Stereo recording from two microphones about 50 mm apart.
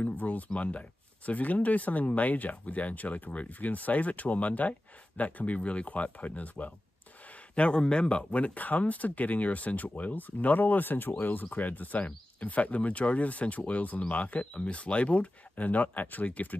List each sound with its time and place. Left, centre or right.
0.0 s speech: left
7.5 s speech: left